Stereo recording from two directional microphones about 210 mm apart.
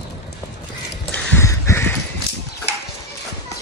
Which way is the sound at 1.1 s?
10° left (ahead or behind).